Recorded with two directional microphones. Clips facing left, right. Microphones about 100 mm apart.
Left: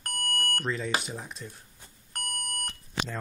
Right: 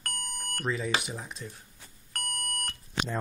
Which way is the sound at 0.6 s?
5° right (ahead or behind).